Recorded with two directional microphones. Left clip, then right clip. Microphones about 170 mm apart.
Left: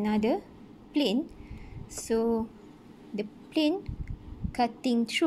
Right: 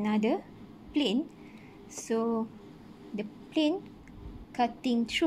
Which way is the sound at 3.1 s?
20° left (ahead or behind).